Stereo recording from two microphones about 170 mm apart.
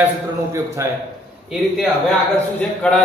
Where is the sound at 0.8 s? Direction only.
15° right (ahead or behind).